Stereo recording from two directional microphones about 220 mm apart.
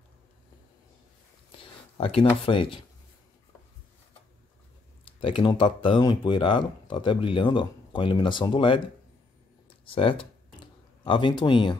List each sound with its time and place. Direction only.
1.6 s speech: 25° left (ahead or behind)
5.0 s speech: 25° left (ahead or behind)
9.8 s a sound: 25° left (ahead or behind)